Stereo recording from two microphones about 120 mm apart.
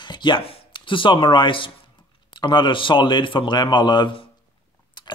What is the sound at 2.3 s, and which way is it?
Speech, 40° left (ahead or behind).